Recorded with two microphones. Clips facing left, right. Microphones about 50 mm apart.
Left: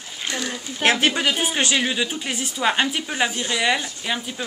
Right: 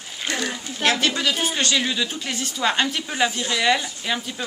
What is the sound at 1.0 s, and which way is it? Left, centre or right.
Speech, left.